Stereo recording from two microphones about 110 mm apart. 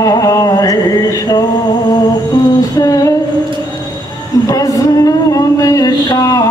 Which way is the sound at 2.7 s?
30° left (ahead or behind).